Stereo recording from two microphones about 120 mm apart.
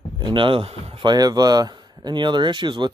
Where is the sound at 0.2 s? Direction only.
45° right (ahead or behind).